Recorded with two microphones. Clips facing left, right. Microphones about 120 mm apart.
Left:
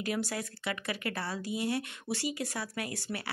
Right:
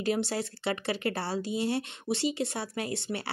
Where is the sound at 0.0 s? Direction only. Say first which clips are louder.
Right 5 dB; 30° right (ahead or behind).